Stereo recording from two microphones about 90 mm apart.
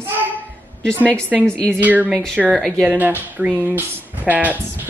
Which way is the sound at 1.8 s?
20° right (ahead or behind).